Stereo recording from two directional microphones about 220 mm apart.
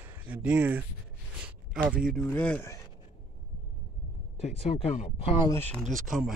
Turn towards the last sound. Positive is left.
turn(degrees=0)  # may be behind; listen again after turning